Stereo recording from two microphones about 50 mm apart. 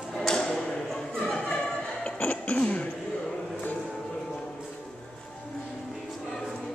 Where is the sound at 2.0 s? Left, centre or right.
Left.